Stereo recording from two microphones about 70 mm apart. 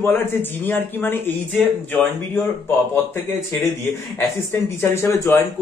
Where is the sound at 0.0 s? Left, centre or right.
Left.